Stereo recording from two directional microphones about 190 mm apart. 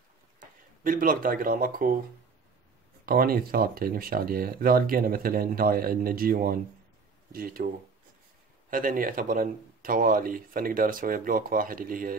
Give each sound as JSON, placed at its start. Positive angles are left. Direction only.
{"t": 0.4, "sound": "speech", "side_deg": -45}
{"t": 3.1, "sound": "a man's voice", "side_deg": -50}